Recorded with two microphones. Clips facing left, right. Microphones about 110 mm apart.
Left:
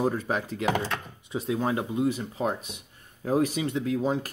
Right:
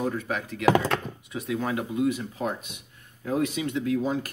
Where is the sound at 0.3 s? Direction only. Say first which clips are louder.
Left 2 dB; 35° left (ahead or behind).